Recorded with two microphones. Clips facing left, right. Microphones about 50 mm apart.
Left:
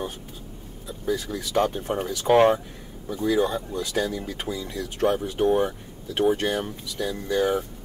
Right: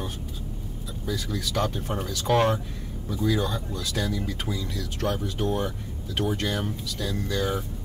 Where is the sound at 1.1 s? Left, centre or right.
Left.